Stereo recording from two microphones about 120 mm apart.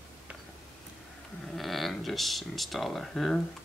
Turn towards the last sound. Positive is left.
turn(degrees=0)  # may be behind; listen again after turning